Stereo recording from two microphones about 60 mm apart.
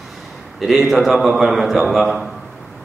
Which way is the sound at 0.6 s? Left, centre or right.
Centre.